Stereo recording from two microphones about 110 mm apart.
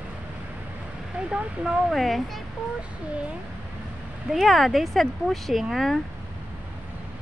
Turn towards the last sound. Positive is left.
turn(degrees=0)  # may be behind; listen again after turning